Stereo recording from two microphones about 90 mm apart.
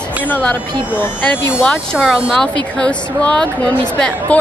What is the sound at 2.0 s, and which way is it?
Speech, centre (ahead or behind).